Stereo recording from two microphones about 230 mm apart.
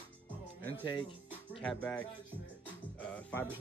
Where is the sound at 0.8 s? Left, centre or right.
Centre.